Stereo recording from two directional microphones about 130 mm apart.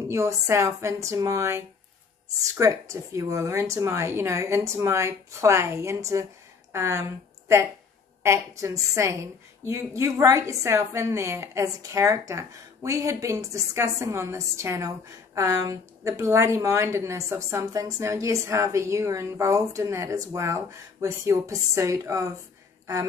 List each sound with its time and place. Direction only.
0.1 s a woman's voice: 25° right (ahead or behind)